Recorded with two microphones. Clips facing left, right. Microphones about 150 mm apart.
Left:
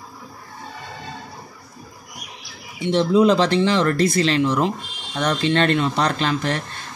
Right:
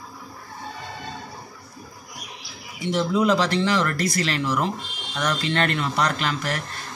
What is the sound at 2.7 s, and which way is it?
Speech, 25° left (ahead or behind).